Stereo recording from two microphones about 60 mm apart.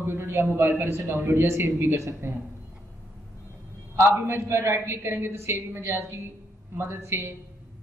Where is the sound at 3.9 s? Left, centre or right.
Right.